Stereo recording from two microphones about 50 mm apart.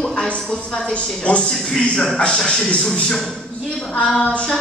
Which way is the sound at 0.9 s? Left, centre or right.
Left.